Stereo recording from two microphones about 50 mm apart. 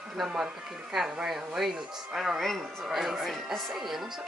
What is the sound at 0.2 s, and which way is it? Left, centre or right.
A woman's voice, centre.